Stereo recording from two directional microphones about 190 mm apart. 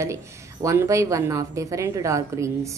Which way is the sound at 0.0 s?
15° right (ahead or behind).